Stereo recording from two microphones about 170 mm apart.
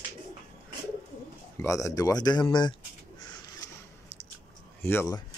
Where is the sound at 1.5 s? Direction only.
15° left (ahead or behind).